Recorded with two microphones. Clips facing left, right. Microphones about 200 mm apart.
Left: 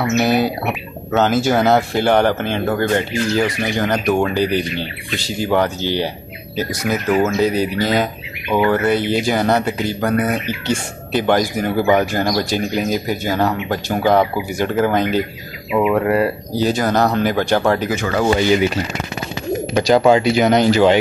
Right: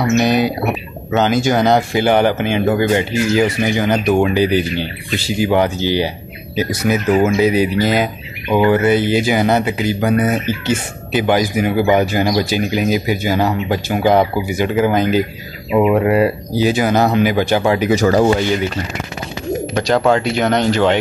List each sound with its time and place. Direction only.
0.2 s speech: 5° left (ahead or behind)
15.7 s speech: 20° right (ahead or behind)
17.9 s speech: 35° right (ahead or behind)
18.2 s speech: centre (ahead or behind)
19.7 s speech: 5° left (ahead or behind)